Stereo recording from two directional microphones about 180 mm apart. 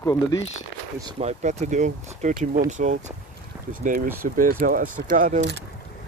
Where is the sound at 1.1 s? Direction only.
40° right (ahead or behind).